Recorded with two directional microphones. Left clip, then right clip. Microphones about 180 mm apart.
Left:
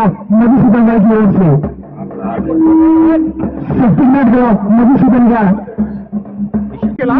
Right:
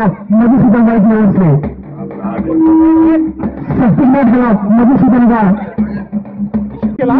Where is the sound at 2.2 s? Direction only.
25° right (ahead or behind).